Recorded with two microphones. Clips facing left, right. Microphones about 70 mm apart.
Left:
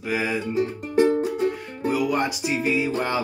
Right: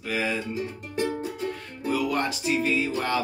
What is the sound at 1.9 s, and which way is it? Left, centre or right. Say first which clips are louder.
Music: left 2 dB; centre.